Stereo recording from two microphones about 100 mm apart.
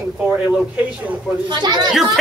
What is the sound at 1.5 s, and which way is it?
Speech, 45° right (ahead or behind).